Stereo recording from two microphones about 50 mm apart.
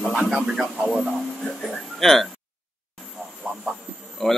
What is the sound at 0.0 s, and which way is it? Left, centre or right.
Speech, centre.